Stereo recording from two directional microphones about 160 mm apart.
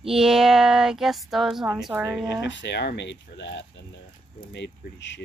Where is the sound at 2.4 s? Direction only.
90° left.